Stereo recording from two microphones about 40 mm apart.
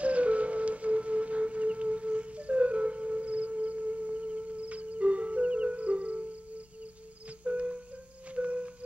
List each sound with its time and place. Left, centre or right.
0.0 s music: right